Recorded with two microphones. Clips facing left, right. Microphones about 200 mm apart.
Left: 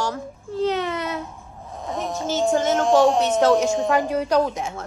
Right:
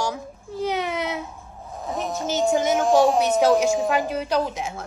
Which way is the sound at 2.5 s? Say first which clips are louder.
Left 1 dB; 10° right (ahead or behind).